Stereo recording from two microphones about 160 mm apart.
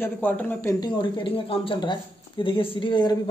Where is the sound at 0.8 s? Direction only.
30° left (ahead or behind).